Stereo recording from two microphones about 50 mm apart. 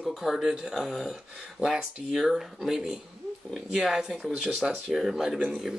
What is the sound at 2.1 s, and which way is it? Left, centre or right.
Speech, centre.